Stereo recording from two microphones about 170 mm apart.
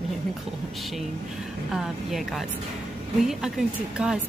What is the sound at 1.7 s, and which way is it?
A woman's voice, centre (ahead or behind).